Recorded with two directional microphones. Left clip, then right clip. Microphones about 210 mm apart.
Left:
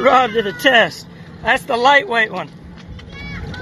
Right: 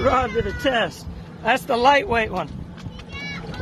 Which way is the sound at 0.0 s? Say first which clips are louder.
Left 7 dB; 15° left (ahead or behind).